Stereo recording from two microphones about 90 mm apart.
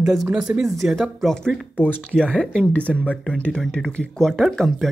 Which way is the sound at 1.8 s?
20° left (ahead or behind).